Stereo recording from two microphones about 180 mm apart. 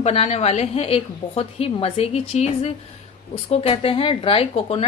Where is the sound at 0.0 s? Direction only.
35° left (ahead or behind).